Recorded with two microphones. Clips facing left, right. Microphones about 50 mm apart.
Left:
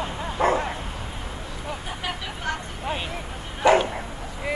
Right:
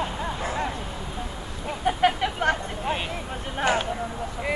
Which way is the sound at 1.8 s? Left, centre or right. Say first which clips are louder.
Right 10 dB; right.